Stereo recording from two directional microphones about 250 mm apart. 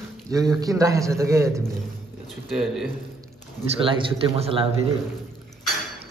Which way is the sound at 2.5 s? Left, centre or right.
Centre.